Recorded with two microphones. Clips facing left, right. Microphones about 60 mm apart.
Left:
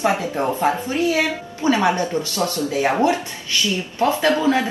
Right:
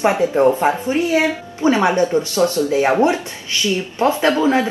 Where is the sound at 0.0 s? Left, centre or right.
Right.